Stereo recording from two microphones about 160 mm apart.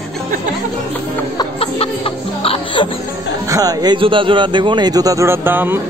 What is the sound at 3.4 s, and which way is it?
Speech, 20° right (ahead or behind).